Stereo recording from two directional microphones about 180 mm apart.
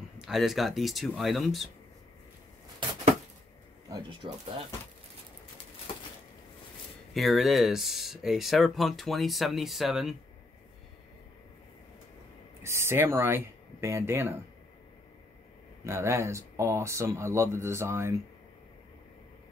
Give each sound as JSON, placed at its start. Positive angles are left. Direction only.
{"t": 0.2, "sound": "speech", "side_deg": 0}
{"t": 3.9, "sound": "speech", "side_deg": -30}
{"t": 7.2, "sound": "speech", "side_deg": 0}
{"t": 12.6, "sound": "speech", "side_deg": -15}
{"t": 15.8, "sound": "speech", "side_deg": -15}